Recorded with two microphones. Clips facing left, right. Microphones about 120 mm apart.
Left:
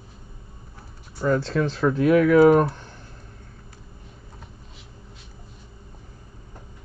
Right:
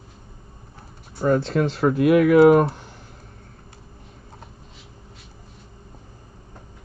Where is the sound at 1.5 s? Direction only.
10° right (ahead or behind).